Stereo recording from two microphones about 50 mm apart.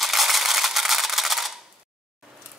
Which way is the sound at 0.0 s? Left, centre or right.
Centre.